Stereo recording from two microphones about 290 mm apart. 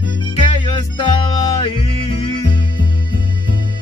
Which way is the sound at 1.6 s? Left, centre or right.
Centre.